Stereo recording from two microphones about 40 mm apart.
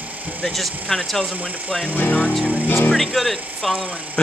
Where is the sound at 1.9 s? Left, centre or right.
Left.